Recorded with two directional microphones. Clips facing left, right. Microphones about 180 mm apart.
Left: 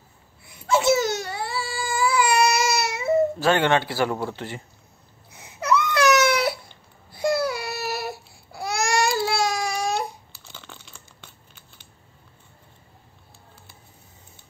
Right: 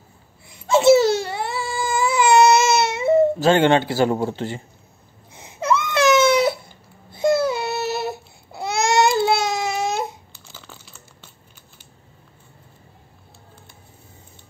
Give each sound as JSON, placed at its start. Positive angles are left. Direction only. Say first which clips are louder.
{"t": 0.5, "sound": "baby cry", "louder": "right 7 dB", "side_deg": -25}
{"t": 10.3, "sound": "crushing", "louder": "right 1 dB", "side_deg": -5}